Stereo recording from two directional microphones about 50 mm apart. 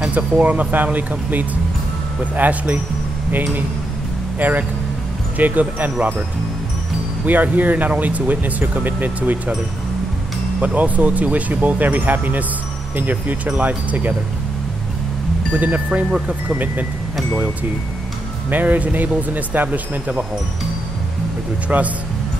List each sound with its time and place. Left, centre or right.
0.1 s speech: right
2.3 s speech: right
4.4 s speech: right
7.2 s speech: right
10.6 s speech: right
15.6 s speech: right
18.5 s speech: right
21.6 s speech: right